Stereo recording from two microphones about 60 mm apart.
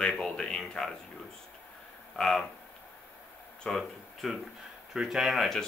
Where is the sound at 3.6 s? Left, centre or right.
Centre.